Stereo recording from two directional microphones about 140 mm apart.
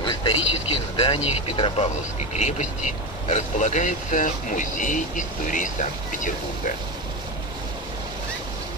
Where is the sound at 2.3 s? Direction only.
55° left (ahead or behind).